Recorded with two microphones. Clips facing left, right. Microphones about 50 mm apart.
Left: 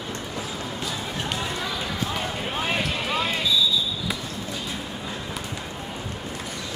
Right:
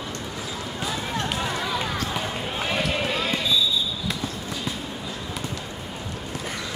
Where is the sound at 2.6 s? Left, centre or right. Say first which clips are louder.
Right 3 dB; left.